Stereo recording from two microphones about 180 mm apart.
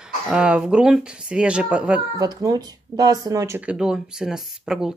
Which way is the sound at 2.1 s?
20° right (ahead or behind).